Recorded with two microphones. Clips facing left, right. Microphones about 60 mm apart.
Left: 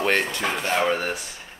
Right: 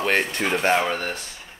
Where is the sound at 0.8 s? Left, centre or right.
Centre.